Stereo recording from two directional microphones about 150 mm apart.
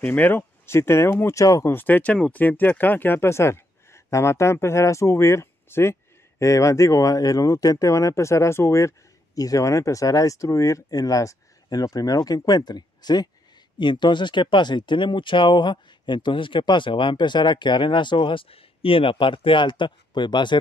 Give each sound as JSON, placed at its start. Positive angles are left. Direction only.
{"t": 0.0, "sound": "speech", "side_deg": 10}